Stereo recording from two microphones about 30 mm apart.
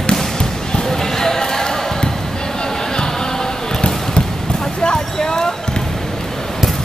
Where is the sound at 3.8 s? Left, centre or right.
Left.